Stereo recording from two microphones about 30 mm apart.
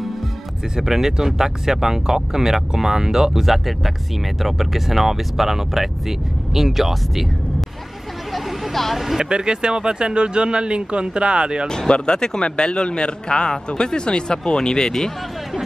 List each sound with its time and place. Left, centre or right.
0.7 s speech: centre
3.3 s speech: centre
8.3 s vehicle: centre
8.9 s speech: centre
9.2 s speech: right
11.9 s speech: left